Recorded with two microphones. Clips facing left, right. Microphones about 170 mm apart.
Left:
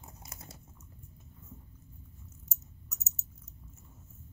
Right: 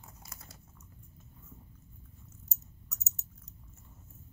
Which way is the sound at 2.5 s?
5° left (ahead or behind).